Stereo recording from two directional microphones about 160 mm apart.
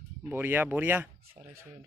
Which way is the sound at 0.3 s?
10° right (ahead or behind).